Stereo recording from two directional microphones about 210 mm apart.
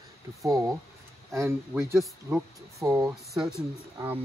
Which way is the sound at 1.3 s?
15° right (ahead or behind).